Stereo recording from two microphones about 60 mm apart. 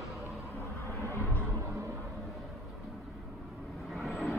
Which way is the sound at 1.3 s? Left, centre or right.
Right.